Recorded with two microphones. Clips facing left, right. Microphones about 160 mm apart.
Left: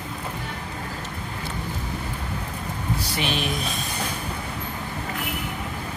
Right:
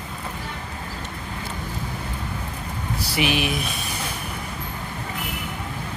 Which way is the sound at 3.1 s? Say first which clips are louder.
Right 6 dB; 10° right (ahead or behind).